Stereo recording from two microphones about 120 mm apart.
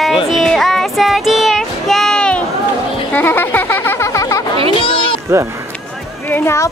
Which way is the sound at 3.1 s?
15° left (ahead or behind).